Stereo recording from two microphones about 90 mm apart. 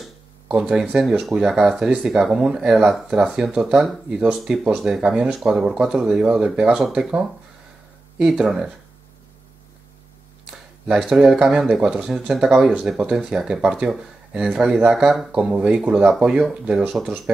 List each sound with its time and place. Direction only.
0.5 s speech: 10° right (ahead or behind)
11.1 s speech: 10° right (ahead or behind)